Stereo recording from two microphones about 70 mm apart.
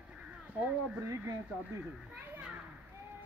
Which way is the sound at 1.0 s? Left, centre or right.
Right.